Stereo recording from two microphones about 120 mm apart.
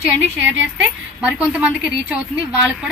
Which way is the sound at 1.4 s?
10° right (ahead or behind).